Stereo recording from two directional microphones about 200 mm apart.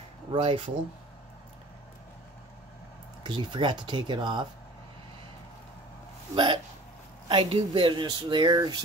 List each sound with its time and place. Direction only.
0.3 s speech: 25° right (ahead or behind)
3.3 s speech: 25° right (ahead or behind)
6.3 s speech: 25° right (ahead or behind)